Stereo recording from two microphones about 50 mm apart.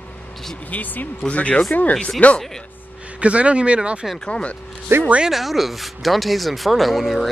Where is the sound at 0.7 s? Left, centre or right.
Left.